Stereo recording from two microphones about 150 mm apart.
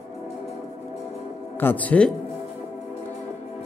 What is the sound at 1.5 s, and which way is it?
Speech, 10° left (ahead or behind).